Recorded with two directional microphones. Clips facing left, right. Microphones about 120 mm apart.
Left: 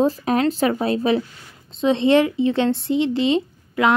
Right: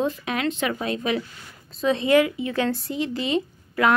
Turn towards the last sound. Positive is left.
turn(degrees=25)  # may be behind; listen again after turning